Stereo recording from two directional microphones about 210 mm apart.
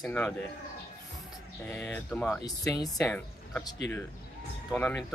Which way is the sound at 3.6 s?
15° left (ahead or behind).